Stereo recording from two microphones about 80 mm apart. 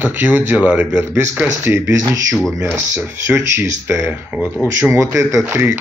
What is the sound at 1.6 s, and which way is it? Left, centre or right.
Speech, right.